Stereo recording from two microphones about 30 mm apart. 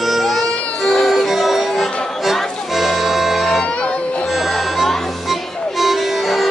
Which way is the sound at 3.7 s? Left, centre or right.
Left.